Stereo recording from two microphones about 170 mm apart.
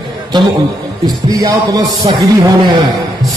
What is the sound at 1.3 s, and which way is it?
Speech, 25° right (ahead or behind).